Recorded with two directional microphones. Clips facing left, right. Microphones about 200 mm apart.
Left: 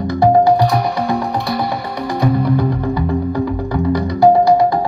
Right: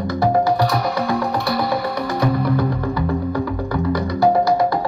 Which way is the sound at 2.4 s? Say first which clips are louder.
Left 3 dB; 15° left (ahead or behind).